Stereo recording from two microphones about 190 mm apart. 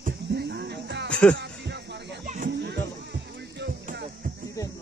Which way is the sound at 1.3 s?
65° right (ahead or behind).